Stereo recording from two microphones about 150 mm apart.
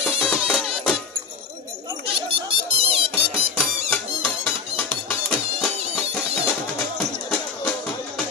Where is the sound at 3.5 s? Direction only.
10° left (ahead or behind).